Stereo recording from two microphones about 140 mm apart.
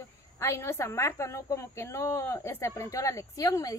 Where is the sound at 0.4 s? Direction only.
20° left (ahead or behind).